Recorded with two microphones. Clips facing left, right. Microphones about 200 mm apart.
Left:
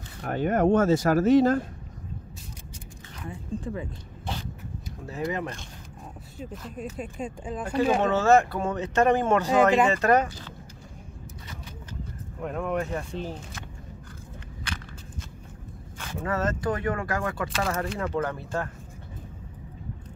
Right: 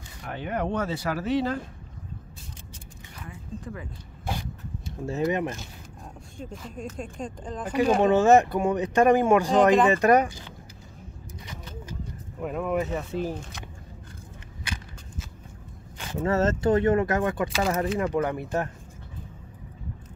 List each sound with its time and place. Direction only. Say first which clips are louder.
0.2 s speech: left 7 dB; 45° left (ahead or behind)
3.3 s speech: left 5 dB; 25° left (ahead or behind)
5.0 s speech: right 5 dB; 25° right (ahead or behind)
6.3 s speech: left 1 dB; 5° left (ahead or behind)
8.0 s speech: right 4 dB; 15° right (ahead or behind)
11.4 s a sound: right 5 dB; 5° right (ahead or behind)
16.0 s speech: right 4 dB; 20° right (ahead or behind)
17.5 s speech: right 3 dB; 5° right (ahead or behind)
17.9 s speech: right 3 dB; 15° right (ahead or behind)